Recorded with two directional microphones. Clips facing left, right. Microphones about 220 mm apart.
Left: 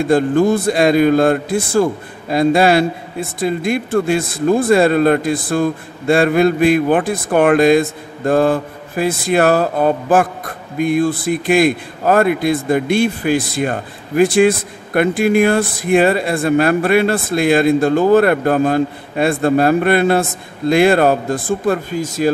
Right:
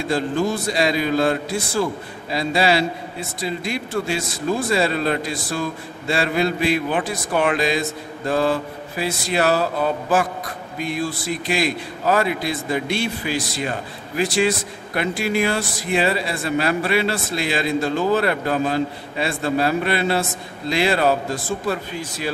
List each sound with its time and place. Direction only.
0.0 s a man's voice: 50° left (ahead or behind)